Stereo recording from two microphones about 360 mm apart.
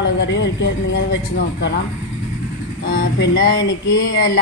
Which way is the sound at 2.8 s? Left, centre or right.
Left.